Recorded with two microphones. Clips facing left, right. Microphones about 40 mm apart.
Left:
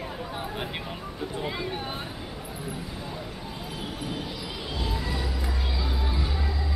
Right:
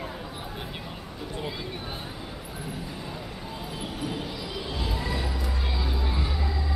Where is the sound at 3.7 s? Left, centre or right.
Centre.